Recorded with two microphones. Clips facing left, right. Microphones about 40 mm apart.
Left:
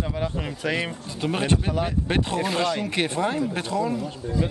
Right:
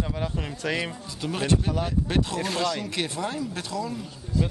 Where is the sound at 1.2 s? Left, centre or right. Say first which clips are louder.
Left 2 dB; left.